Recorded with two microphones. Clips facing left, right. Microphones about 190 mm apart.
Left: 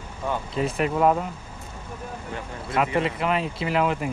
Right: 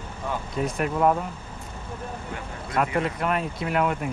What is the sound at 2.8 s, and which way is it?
Speech, 5° left (ahead or behind).